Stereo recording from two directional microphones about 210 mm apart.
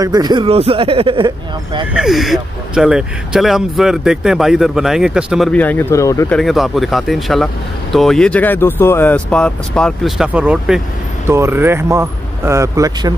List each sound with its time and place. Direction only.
0.0 s speech: 20° right (ahead or behind)
2.0 s speech: centre (ahead or behind)
6.3 s speech: centre (ahead or behind); by 13.1 s 15° right (ahead or behind)